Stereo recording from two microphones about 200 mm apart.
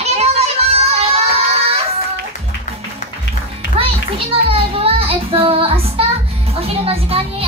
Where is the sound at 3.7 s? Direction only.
30° right (ahead or behind).